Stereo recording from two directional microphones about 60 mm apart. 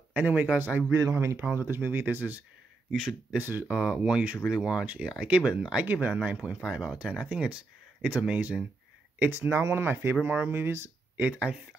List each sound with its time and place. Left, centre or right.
0.1 s speech: right
1.1 s speech: right
1.5 s speech: right
2.9 s speech: centre
3.3 s speech: right
3.6 s speech: centre
4.8 s speech: right
5.8 s speech: right
9.3 s speech: right
11.1 s speech: right